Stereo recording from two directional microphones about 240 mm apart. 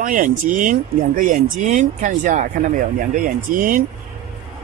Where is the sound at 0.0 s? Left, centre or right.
Right.